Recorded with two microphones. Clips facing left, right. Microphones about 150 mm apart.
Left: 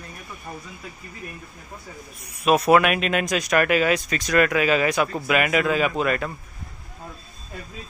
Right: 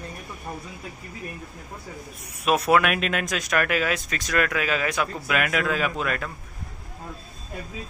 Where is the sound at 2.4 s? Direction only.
Centre (ahead or behind).